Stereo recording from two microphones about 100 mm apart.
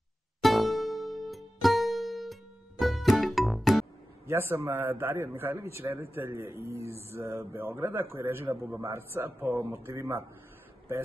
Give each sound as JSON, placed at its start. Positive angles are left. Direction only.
{"t": 0.4, "sound": "music", "side_deg": 0}
{"t": 4.3, "sound": "a man's voice", "side_deg": -25}